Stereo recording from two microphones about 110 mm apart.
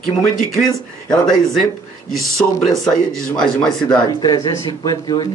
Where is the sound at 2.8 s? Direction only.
5° left (ahead or behind).